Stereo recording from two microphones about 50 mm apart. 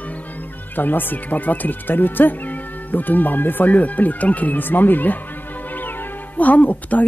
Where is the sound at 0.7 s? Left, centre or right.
Left.